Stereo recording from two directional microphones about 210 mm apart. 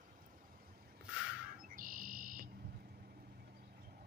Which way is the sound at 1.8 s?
40° right (ahead or behind).